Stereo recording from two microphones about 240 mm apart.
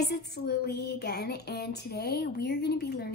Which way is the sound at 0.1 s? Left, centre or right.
Left.